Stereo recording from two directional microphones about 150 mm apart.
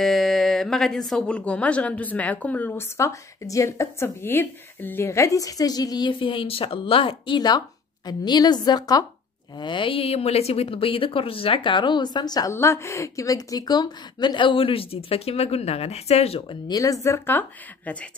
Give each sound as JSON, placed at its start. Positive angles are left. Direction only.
{"t": 0.0, "sound": "speech", "side_deg": 0}
{"t": 16.6, "sound": "speech", "side_deg": 25}